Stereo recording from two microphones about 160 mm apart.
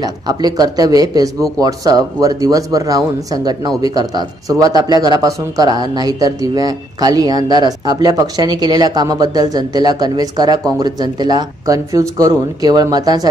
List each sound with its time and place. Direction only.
0.0 s speech: 25° right (ahead or behind)